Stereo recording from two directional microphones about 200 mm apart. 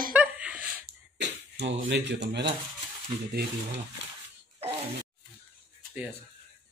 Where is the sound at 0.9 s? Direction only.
60° right (ahead or behind).